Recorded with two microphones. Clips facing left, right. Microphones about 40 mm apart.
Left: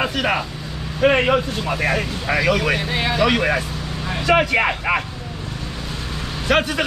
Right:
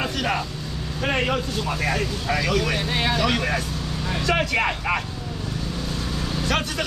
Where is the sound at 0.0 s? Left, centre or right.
Left.